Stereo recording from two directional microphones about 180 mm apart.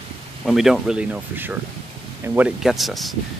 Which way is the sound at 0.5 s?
Centre (ahead or behind).